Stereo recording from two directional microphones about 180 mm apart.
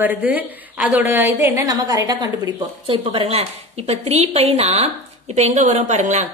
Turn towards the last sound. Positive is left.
turn(degrees=-40)  # may be behind; listen again after turning